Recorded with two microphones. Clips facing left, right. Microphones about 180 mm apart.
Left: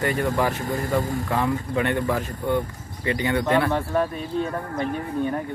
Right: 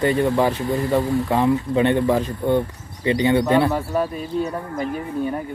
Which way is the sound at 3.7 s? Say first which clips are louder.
Right 1 dB; 5° right (ahead or behind).